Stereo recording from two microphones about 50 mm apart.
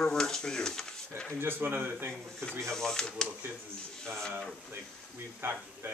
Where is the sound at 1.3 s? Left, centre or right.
Right.